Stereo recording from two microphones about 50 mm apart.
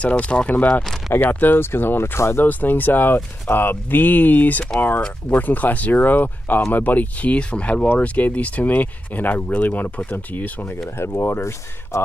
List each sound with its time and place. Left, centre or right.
0.0 s speech: left
1.6 s speech: left
2.1 s speech: left
2.4 s speech: left
11.0 s speech: left